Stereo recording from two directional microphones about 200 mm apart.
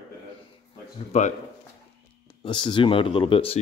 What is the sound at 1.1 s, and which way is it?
Speech, 35° left (ahead or behind).